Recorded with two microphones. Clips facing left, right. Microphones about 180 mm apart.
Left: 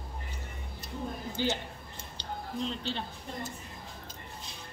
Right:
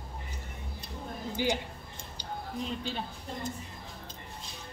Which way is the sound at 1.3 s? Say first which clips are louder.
Right 2 dB; 15° right (ahead or behind).